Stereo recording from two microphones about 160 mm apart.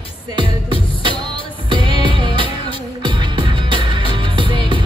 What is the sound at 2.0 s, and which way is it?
Music, 30° right (ahead or behind).